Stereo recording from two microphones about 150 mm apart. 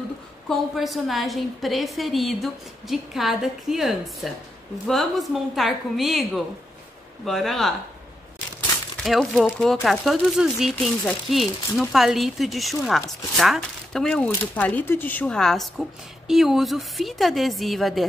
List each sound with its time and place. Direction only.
0.5 s a woman's voice: centre (ahead or behind)
9.0 s a woman's voice: centre (ahead or behind)